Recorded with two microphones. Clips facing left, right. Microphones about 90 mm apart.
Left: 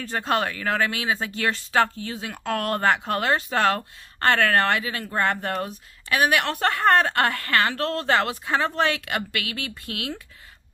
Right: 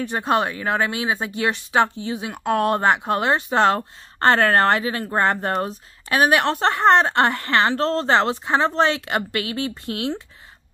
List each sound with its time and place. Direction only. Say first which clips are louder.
0.0 s speech: right 4 dB; 20° right (ahead or behind)